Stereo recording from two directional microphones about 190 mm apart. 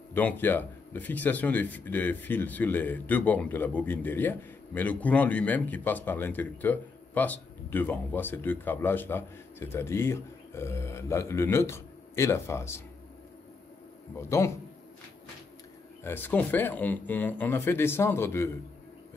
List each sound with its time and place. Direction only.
0.1 s speech: 10° left (ahead or behind)
14.1 s speech: 15° left (ahead or behind)
16.0 s speech: 10° left (ahead or behind)